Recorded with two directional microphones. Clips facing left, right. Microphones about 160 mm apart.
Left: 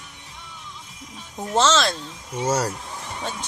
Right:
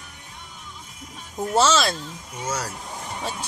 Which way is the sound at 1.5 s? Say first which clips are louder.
Even; 10° right (ahead or behind).